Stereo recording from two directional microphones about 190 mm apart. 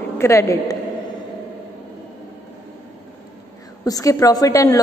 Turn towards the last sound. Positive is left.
turn(degrees=15)  # may be behind; listen again after turning